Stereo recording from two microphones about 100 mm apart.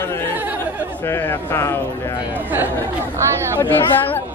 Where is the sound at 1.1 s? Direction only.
25° left (ahead or behind).